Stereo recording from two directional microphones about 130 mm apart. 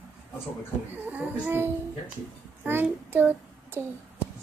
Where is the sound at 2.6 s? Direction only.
15° right (ahead or behind).